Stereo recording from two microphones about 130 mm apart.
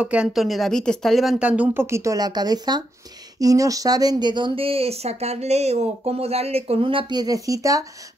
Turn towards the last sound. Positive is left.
turn(degrees=-25)  # may be behind; listen again after turning